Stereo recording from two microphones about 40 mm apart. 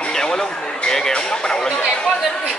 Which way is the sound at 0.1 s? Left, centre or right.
Centre.